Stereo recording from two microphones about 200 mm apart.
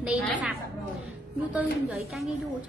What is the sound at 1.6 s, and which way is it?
Speech, centre (ahead or behind).